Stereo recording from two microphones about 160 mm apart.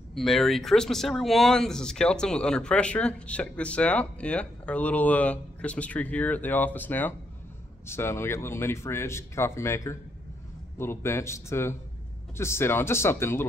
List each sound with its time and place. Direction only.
0.1 s speech: centre (ahead or behind)